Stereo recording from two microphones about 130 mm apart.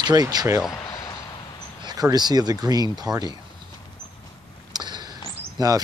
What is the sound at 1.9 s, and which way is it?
Speech, 30° right (ahead or behind).